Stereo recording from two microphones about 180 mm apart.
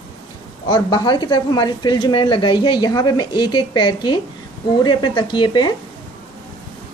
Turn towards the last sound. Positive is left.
turn(degrees=25)  # may be behind; listen again after turning